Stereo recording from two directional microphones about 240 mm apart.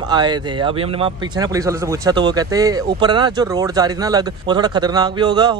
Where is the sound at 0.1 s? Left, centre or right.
Centre.